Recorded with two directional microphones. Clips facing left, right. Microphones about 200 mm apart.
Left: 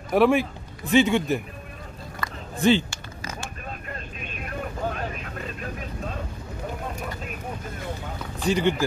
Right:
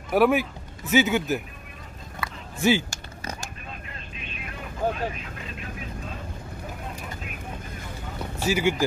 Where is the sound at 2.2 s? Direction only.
5° right (ahead or behind).